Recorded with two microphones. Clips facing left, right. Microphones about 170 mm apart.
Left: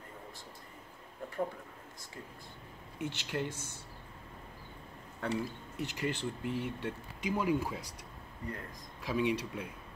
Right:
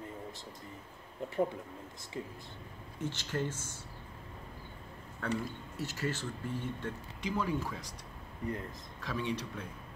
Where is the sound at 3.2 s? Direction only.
15° left (ahead or behind).